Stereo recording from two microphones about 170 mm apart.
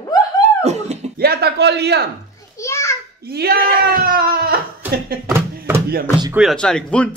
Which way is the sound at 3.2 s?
65° right (ahead or behind).